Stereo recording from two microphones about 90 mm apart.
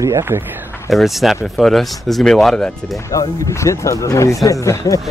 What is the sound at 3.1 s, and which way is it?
Speech, 40° left (ahead or behind).